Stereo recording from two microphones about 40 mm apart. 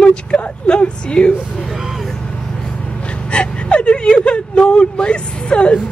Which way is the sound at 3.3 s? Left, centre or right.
Left.